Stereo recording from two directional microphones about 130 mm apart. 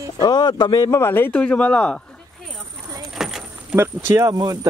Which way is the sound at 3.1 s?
5° right (ahead or behind).